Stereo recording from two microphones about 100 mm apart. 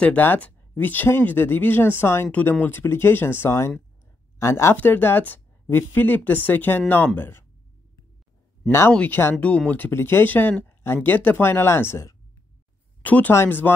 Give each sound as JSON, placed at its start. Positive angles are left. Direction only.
{"t": 0.0, "sound": "speech", "side_deg": 15}
{"t": 8.6, "sound": "speech", "side_deg": 25}
{"t": 8.9, "sound": "speech", "side_deg": 15}